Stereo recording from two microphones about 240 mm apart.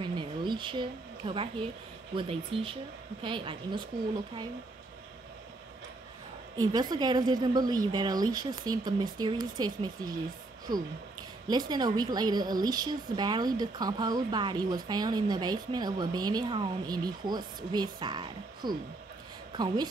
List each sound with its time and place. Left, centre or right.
0.0 s a sound: centre
2.1 s speech: right
6.5 s a woman's voice: centre
11.4 s a woman's voice: centre